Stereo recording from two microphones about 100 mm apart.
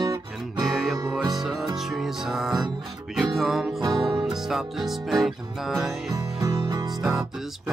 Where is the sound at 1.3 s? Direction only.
5° right (ahead or behind).